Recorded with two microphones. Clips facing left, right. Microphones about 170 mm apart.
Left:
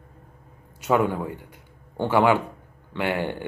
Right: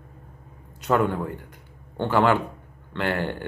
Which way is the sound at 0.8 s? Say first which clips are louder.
Even; 10° left (ahead or behind).